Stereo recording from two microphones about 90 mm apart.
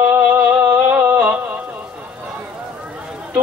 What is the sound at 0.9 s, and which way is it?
Music, 20° right (ahead or behind).